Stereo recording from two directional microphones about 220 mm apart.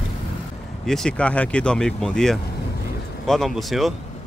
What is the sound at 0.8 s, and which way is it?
Speech, centre (ahead or behind).